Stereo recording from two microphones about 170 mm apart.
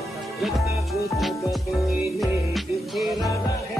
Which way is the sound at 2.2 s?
Centre (ahead or behind).